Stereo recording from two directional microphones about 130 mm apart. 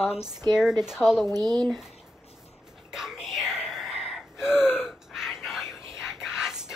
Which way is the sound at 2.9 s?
5° right (ahead or behind).